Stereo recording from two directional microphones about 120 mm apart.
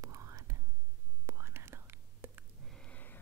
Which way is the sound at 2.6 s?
5° left (ahead or behind).